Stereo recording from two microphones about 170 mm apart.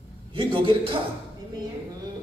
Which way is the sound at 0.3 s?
30° right (ahead or behind).